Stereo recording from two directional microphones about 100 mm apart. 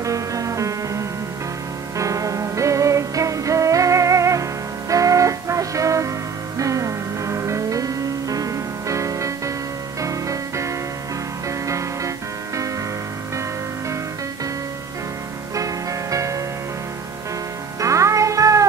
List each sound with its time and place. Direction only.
0.0 s music: 35° right (ahead or behind)
15.5 s music: 35° right (ahead or behind)
17.7 s music: 30° right (ahead or behind)